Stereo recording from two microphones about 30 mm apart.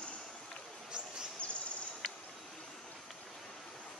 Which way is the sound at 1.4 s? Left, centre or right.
Left.